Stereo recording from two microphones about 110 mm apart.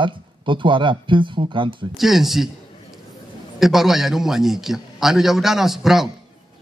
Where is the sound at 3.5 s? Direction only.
5° right (ahead or behind).